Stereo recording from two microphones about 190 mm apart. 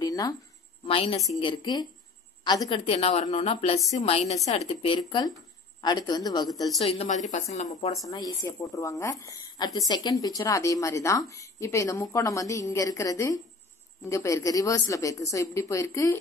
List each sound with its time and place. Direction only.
0.0 s a sound: 20° left (ahead or behind)
0.8 s a woman's voice: 30° left (ahead or behind)
6.8 s a woman's voice: 30° left (ahead or behind)
8.1 s a woman's voice: 20° left (ahead or behind)